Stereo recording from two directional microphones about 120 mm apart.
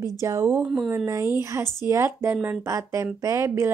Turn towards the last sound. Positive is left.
turn(degrees=-25)  # may be behind; listen again after turning